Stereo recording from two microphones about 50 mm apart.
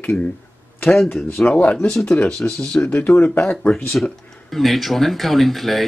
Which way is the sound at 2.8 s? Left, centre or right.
Left.